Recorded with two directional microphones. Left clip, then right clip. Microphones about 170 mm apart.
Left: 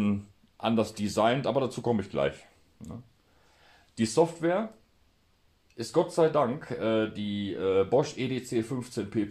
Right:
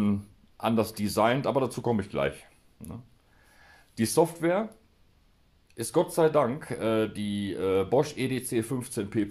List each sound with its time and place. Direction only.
0.0 s speech: 25° right (ahead or behind); by 4.6 s 40° right (ahead or behind)
5.8 s speech: 40° right (ahead or behind)